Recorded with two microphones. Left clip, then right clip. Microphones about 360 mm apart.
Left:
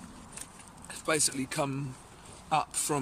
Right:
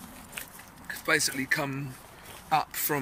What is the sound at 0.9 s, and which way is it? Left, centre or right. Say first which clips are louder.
Speech: right 4 dB; centre.